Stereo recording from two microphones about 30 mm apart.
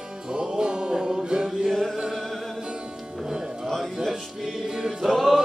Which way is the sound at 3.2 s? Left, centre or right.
Right.